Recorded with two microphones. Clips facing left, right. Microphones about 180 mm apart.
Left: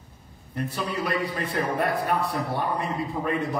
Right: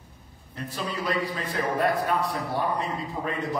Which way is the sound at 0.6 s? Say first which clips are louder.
Left 3 dB; 60° left (ahead or behind).